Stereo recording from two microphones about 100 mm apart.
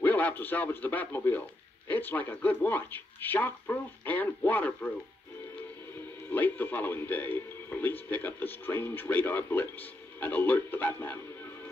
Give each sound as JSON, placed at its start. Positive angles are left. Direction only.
{"t": 0.0, "sound": "speech", "side_deg": 15}
{"t": 6.3, "sound": "speech", "side_deg": 20}